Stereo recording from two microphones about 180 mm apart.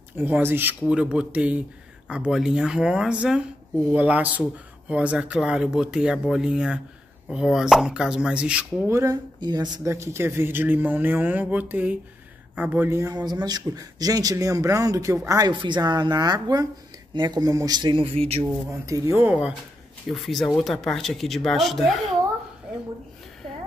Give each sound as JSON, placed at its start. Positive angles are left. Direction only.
{"t": 0.2, "sound": "a man's voice", "side_deg": -10}
{"t": 18.4, "sound": "speech", "side_deg": -15}